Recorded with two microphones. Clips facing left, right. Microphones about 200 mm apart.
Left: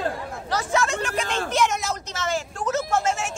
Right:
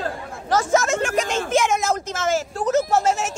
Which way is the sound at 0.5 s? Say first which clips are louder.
Right 5 dB; 45° right (ahead or behind).